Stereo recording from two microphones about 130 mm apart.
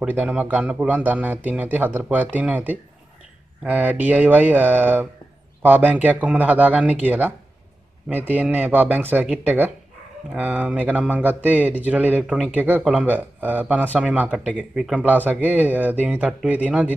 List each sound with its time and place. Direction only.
0.0 s speech: 10° right (ahead or behind)
12.2 s speech: centre (ahead or behind)
12.4 s speech: 15° right (ahead or behind)